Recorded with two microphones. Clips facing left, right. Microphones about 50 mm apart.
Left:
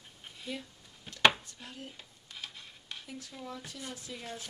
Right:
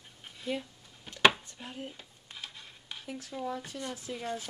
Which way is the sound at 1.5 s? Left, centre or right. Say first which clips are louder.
Right 4 dB; centre.